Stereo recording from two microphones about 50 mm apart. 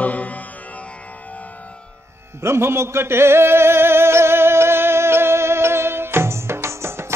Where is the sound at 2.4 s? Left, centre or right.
Right.